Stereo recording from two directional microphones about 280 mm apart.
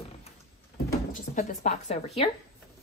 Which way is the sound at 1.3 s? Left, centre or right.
Left.